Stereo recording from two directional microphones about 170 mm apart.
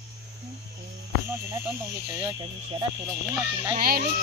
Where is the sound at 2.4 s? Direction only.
30° right (ahead or behind).